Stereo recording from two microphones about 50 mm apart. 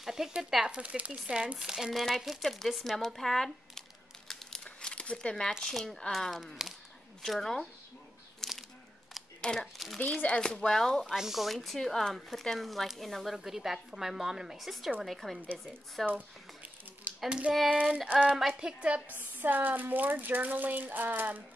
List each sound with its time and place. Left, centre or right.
0.0 s a sound: centre
0.4 s speech: centre
0.7 s a woman's voice: right
1.6 s speech: centre
4.3 s a sound: centre
4.6 s crumpling: left
5.7 s speech: centre
8.4 s a sound: centre
9.6 s speech: centre
9.9 s speech: left
11.1 s speech: centre
16.1 s a sound: right
17.3 s a woman's voice: centre
19.1 s speech: right